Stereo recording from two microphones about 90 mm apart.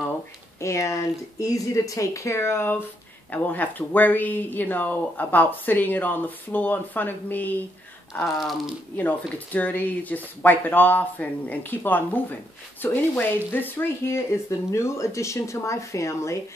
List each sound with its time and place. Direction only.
0.6 s speech: 35° left (ahead or behind)
8.4 s speech: centre (ahead or behind)
8.9 s speech: 20° left (ahead or behind); by 16.3 s 35° left (ahead or behind)